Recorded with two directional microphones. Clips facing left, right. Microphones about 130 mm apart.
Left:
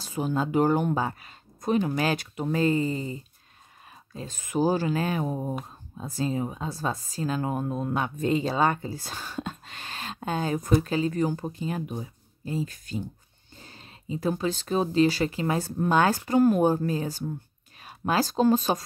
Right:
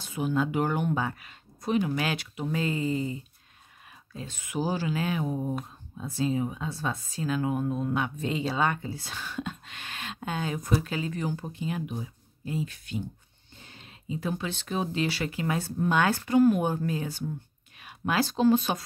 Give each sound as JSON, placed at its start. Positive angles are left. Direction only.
{"t": 0.0, "sound": "a woman's voice", "side_deg": 40}
{"t": 13.6, "sound": "a sound", "side_deg": 40}
{"t": 14.3, "sound": "a woman's voice", "side_deg": 40}